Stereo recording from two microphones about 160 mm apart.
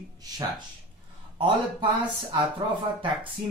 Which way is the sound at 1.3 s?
30° right (ahead or behind).